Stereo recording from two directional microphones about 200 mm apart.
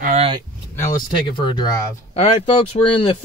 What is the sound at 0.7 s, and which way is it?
Speech, 20° left (ahead or behind).